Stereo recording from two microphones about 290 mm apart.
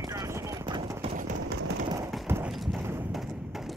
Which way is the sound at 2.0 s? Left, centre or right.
Centre.